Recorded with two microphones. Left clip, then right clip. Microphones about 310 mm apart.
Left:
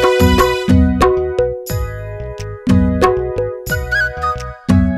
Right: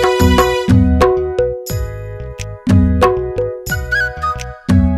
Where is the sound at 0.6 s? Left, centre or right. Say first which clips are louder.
Even; centre.